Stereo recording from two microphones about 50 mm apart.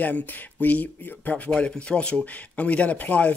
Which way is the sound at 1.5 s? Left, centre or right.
Centre.